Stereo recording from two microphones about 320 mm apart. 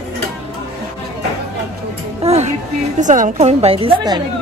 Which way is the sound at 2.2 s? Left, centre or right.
Centre.